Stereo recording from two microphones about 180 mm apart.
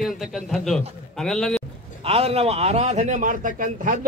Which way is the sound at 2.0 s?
30° right (ahead or behind).